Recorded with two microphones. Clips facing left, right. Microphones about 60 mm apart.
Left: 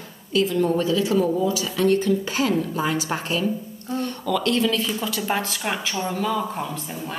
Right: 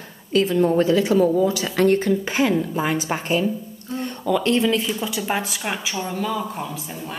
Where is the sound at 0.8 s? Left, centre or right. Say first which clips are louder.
Right 3 dB; right.